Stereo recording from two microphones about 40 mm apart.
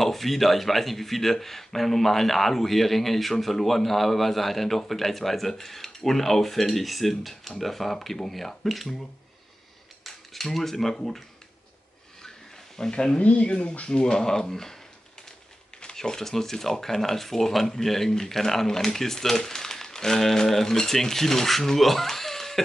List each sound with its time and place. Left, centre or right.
0.0 s speech: centre
10.0 s cutlery: centre
12.7 s speech: centre
13.2 s speech: left; by 14.8 s centre
15.8 s speech: centre